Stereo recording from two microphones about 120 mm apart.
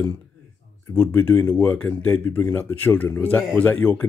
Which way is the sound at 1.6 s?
10° left (ahead or behind).